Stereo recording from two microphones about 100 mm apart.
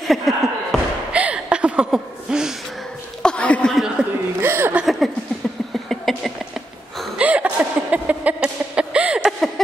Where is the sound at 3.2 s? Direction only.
15° left (ahead or behind).